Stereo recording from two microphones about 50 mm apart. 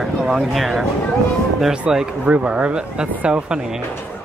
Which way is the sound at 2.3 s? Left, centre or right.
Right.